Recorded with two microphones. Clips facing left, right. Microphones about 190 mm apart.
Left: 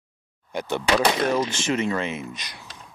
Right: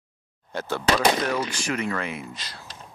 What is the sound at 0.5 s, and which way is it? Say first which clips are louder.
Speech: left 1 dB; 15° left (ahead or behind).